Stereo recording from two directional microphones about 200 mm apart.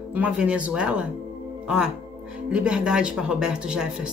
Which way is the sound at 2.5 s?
5° right (ahead or behind).